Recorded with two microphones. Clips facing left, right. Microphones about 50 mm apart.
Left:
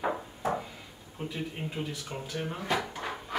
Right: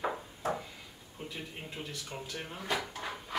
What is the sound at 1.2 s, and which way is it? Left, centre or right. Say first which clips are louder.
Speech: left 7 dB; centre.